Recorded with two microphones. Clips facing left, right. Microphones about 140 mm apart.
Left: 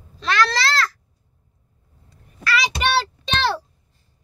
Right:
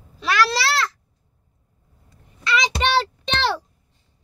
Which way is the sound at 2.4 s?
20° right (ahead or behind).